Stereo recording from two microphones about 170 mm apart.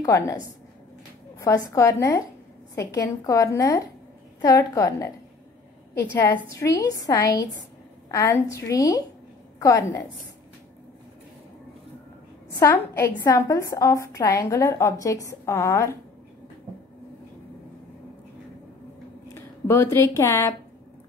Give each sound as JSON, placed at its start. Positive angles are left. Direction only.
{"t": 0.0, "sound": "a woman's voice", "side_deg": 20}
{"t": 1.4, "sound": "a woman's voice", "side_deg": 15}
{"t": 6.1, "sound": "a woman's voice", "side_deg": 15}
{"t": 12.5, "sound": "a woman's voice", "side_deg": 15}
{"t": 19.3, "sound": "speech", "side_deg": 15}